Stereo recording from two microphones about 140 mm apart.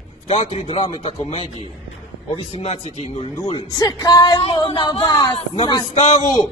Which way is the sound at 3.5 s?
25° left (ahead or behind).